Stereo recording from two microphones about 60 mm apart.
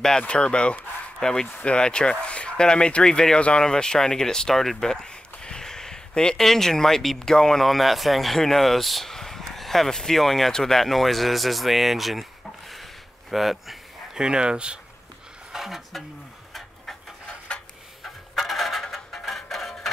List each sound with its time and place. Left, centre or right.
0.2 s speech: centre
14.2 s speech: centre
15.5 s speech: centre
18.0 s music: centre